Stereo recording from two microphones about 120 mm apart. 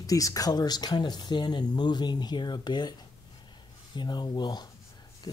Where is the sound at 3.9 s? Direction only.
35° left (ahead or behind).